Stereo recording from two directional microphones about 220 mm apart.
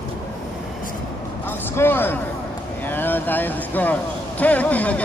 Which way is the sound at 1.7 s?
10° left (ahead or behind).